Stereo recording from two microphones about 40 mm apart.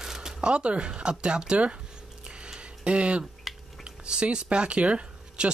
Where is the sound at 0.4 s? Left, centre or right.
Right.